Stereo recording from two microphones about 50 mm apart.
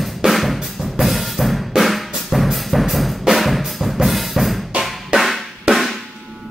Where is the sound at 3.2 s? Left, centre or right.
Centre.